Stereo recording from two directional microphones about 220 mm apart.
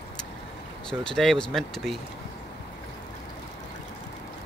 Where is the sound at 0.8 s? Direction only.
Centre (ahead or behind).